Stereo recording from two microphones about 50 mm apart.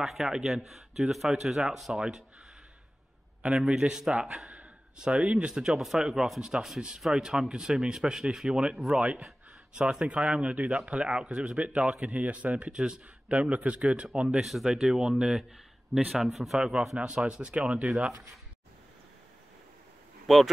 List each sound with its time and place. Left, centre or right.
0.0 s a man's voice: centre
3.5 s a man's voice: centre
4.5 s a sound: centre
5.5 s a man's voice: centre
13.4 s speech: right
14.3 s a man's voice: centre; by 17.9 s right
20.3 s speech: centre